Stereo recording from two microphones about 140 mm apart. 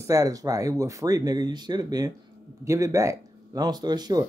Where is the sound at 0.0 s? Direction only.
25° right (ahead or behind).